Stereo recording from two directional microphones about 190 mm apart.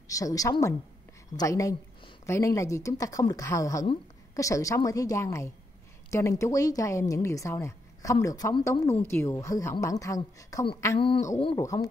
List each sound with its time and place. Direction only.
0.1 s a woman's voice: 20° left (ahead or behind)